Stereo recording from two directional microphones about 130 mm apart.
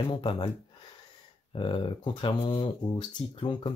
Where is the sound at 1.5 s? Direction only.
40° left (ahead or behind).